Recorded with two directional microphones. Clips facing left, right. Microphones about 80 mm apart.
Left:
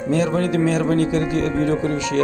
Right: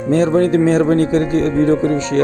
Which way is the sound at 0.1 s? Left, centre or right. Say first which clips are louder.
Right 6 dB; right.